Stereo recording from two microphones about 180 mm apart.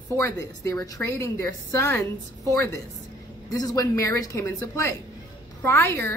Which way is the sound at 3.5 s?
20° left (ahead or behind).